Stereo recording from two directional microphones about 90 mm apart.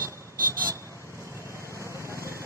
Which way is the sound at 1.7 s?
35° right (ahead or behind).